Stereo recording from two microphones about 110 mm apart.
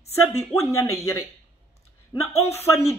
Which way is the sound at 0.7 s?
25° left (ahead or behind).